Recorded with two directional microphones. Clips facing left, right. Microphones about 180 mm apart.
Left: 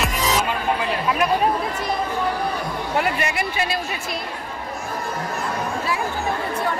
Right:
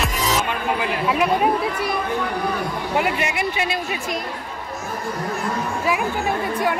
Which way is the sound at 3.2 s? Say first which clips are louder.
Right 1 dB; 15° right (ahead or behind).